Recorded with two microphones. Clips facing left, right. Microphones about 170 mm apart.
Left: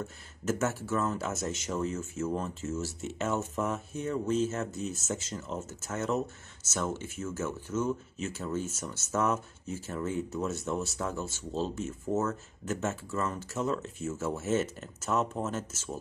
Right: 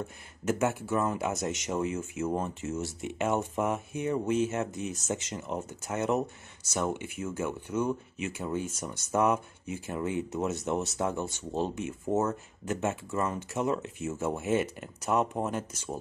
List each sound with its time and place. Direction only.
0.0 s speech: 15° right (ahead or behind)